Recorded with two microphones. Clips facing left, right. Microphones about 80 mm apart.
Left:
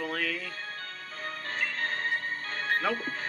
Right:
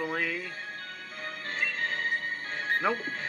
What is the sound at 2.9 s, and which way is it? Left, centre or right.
Speech, right.